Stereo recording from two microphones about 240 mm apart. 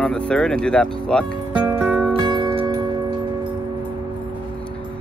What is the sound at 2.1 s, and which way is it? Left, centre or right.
Music, centre.